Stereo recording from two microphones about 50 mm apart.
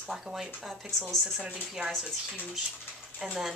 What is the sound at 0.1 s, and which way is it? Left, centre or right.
Speech, centre.